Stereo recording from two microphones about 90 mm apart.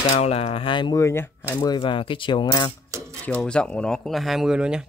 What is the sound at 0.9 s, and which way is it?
Speech, 30° left (ahead or behind).